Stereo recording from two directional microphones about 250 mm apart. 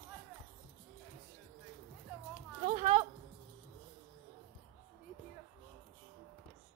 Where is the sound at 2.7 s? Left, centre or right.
Right.